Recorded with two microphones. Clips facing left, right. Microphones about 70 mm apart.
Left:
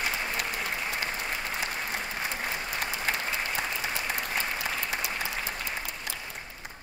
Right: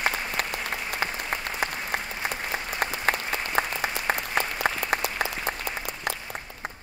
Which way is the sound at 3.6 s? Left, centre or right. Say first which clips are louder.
Right 5 dB; right.